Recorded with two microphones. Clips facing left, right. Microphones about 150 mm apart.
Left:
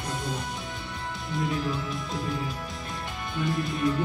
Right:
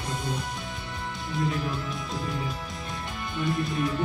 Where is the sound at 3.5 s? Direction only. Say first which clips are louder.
Right 2 dB; centre (ahead or behind).